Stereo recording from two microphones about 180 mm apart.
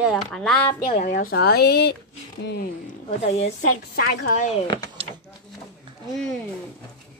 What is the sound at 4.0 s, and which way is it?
Speech, 60° left (ahead or behind).